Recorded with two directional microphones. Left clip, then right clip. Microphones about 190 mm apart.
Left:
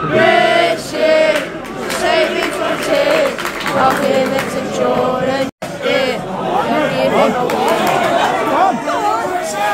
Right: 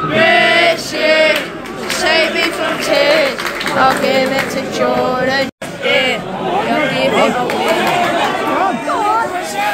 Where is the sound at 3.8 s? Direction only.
10° left (ahead or behind).